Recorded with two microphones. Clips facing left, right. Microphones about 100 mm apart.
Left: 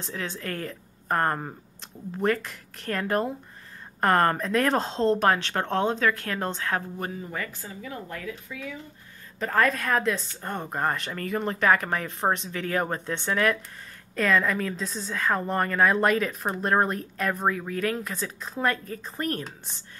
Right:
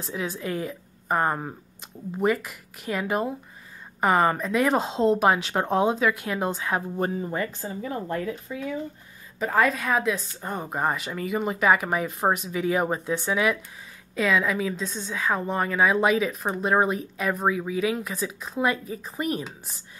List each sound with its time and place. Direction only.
0.0 s speech: 10° right (ahead or behind)
7.0 s speech: 30° right (ahead or behind)
9.4 s a woman's voice: 5° right (ahead or behind)